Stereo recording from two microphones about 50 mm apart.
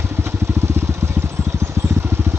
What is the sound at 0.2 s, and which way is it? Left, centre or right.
Vehicle, right.